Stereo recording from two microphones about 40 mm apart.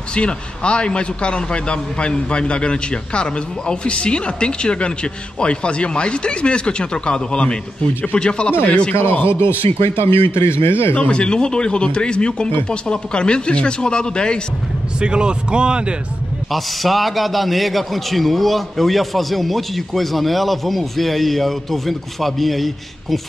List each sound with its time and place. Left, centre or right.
0.1 s a man's voice: left
9.2 s a man's voice: left
11.0 s a man's voice: left
15.0 s speech: right
16.5 s a man's voice: centre